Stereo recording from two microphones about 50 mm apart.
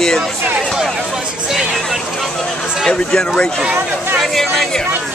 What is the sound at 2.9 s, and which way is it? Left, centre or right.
Speech, centre.